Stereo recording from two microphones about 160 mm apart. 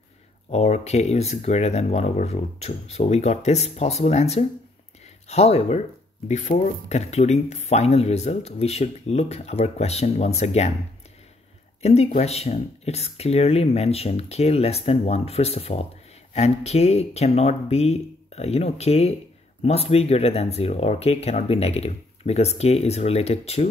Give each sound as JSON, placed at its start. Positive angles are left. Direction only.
{"t": 0.5, "sound": "speech", "side_deg": 40}
{"t": 11.8, "sound": "speech", "side_deg": 40}